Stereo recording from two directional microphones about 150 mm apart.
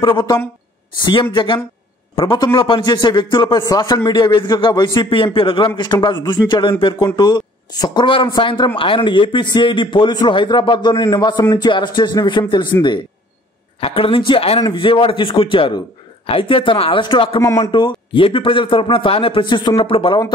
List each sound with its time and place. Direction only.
0.0 s a man's voice: 30° left (ahead or behind)
13.7 s a man's voice: 40° left (ahead or behind)